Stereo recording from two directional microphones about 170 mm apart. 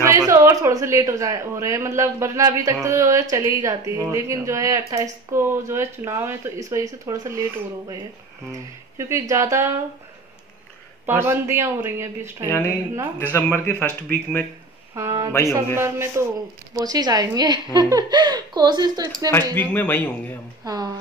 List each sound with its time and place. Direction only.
0.0 s speech: 15° right (ahead or behind)
8.9 s speech: 15° right (ahead or behind)
11.1 s speech: 15° right (ahead or behind)
12.4 s speech: 15° left (ahead or behind)
15.0 s a woman's voice: 20° right (ahead or behind)
19.5 s speech: 10° left (ahead or behind)
20.6 s a woman's voice: 20° right (ahead or behind)